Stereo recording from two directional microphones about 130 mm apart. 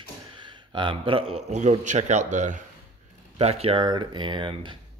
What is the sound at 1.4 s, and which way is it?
A man's voice, 65° right (ahead or behind).